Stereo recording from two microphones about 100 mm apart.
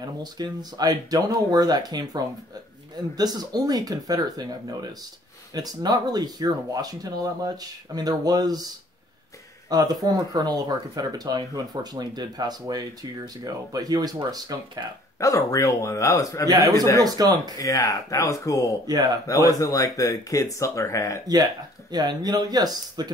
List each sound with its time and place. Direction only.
0.0 s speech: 45° right (ahead or behind)
9.7 s speech: 40° right (ahead or behind)
15.1 s speech: 35° left (ahead or behind)
16.4 s speech: 40° right (ahead or behind)
17.6 s speech: 35° left (ahead or behind)
18.9 s speech: 45° right (ahead or behind)
19.2 s speech: 35° left (ahead or behind)
21.9 s speech: 45° right (ahead or behind)